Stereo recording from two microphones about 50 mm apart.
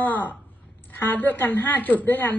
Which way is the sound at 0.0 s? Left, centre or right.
Left.